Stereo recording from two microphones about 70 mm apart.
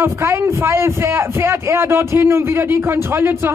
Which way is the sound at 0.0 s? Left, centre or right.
Right.